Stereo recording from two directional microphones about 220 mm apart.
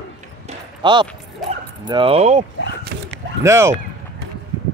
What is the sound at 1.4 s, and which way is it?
Dog, centre (ahead or behind).